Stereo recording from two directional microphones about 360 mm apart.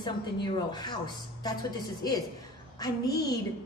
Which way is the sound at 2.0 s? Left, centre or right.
Centre.